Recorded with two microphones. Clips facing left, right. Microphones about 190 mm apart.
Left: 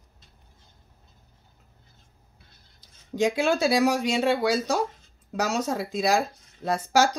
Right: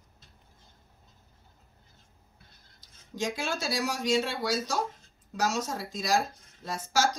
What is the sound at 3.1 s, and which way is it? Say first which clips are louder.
Speech: left 9 dB; 65° left (ahead or behind).